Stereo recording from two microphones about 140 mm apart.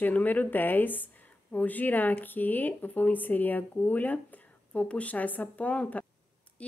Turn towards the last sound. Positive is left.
turn(degrees=10)  # may be behind; listen again after turning